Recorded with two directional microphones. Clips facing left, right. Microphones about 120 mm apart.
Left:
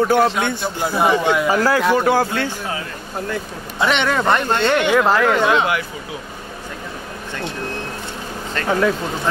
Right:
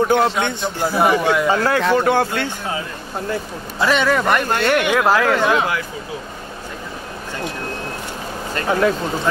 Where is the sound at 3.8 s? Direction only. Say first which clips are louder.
Right 1 dB; 25° left (ahead or behind).